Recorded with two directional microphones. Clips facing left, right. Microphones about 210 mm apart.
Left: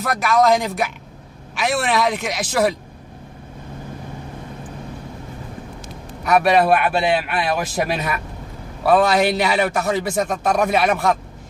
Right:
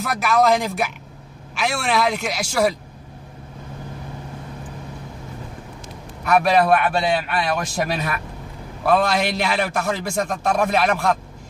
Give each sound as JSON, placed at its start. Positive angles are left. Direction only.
{"t": 0.0, "sound": "speech", "side_deg": 0}
{"t": 6.2, "sound": "a man's voice", "side_deg": 5}